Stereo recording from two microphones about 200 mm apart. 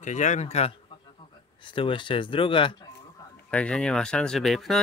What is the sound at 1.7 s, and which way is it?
Speech, 25° left (ahead or behind).